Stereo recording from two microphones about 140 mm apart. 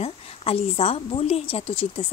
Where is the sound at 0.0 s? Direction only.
45° left (ahead or behind).